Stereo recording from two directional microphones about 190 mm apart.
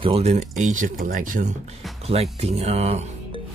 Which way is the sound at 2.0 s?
30° right (ahead or behind).